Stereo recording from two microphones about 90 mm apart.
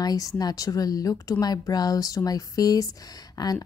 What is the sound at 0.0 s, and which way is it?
Speech, 45° left (ahead or behind).